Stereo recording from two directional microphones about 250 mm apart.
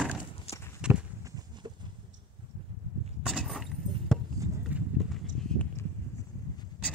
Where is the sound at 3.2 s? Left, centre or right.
Centre.